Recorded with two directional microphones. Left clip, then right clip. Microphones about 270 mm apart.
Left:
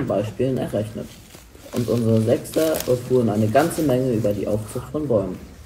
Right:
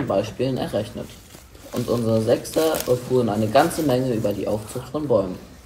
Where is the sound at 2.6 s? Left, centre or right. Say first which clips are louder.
Even; right.